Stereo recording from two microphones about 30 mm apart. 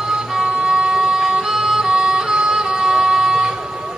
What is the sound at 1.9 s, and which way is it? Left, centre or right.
Music, right.